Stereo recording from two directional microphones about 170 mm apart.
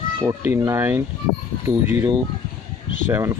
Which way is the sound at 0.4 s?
15° right (ahead or behind).